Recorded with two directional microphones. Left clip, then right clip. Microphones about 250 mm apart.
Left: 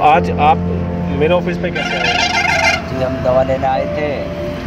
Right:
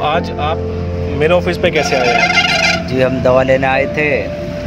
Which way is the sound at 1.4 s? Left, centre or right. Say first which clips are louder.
Right 5 dB; right.